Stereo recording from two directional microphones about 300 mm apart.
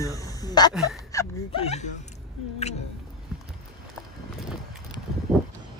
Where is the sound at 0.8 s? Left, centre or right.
Centre.